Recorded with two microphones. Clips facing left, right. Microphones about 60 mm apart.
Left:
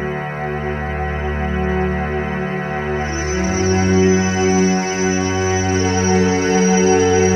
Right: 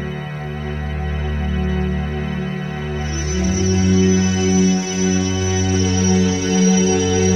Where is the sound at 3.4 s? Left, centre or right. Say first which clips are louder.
Left 1 dB; left.